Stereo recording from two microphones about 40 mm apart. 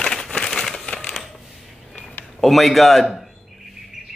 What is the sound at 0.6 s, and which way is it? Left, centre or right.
Crumpling, centre.